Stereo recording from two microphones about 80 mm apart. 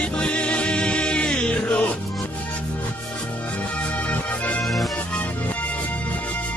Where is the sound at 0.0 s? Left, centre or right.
Centre.